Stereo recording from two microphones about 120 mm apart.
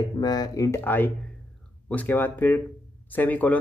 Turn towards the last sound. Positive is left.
turn(degrees=15)  # may be behind; listen again after turning